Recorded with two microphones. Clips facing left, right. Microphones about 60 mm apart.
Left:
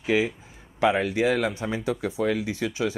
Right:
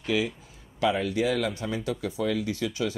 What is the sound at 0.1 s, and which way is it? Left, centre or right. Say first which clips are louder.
Speech: left 4 dB; left.